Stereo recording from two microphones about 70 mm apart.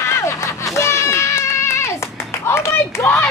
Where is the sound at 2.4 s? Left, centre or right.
Left.